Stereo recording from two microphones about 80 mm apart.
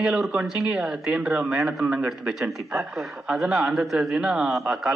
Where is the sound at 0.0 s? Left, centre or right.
Centre.